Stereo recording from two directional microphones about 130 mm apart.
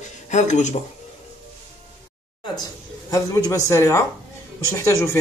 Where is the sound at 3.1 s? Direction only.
25° left (ahead or behind).